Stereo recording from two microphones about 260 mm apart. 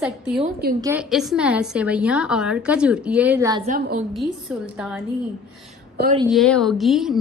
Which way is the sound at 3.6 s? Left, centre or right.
Right.